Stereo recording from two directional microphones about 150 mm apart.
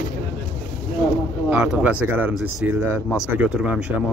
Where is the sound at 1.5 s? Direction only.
5° right (ahead or behind).